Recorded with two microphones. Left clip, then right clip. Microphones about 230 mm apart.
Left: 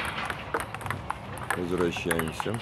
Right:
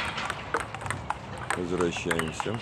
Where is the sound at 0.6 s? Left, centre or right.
Right.